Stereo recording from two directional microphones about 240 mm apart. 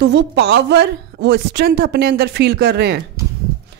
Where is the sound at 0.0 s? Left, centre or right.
Right.